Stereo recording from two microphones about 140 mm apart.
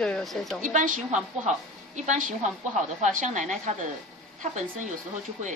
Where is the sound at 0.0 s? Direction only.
5° left (ahead or behind).